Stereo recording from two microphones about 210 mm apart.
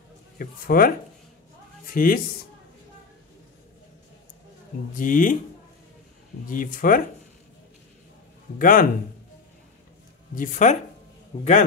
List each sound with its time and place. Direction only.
0.4 s speech: 45° left (ahead or behind)
4.9 s speech: 40° left (ahead or behind)
6.4 s speech: 40° left (ahead or behind)
8.5 s speech: 40° left (ahead or behind)
10.3 s a man's voice: 40° left (ahead or behind)